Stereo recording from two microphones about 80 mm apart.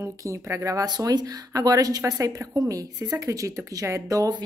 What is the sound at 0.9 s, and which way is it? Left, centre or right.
Speech, right.